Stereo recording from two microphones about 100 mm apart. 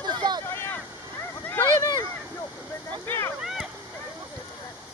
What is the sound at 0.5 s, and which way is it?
Boat, 20° left (ahead or behind).